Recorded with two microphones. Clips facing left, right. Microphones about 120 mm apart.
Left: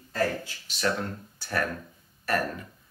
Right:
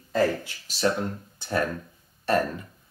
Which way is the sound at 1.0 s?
20° right (ahead or behind).